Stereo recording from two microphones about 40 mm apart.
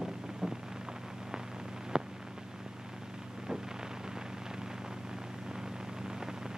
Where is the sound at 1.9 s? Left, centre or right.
Centre.